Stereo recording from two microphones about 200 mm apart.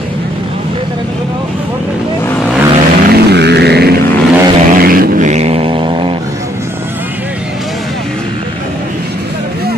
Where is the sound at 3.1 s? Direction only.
55° right (ahead or behind).